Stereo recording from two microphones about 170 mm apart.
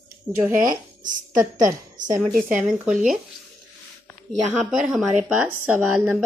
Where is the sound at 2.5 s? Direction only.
10° right (ahead or behind).